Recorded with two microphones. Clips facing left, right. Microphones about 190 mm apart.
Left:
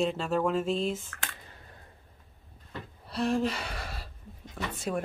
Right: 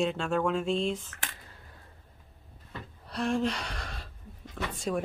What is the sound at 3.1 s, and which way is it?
Gasp, centre (ahead or behind).